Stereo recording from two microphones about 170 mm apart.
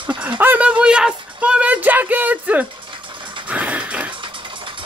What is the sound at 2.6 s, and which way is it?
Dog, 30° right (ahead or behind).